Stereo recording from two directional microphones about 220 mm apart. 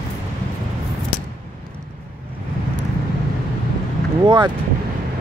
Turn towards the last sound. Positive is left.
turn(degrees=-15)  # may be behind; listen again after turning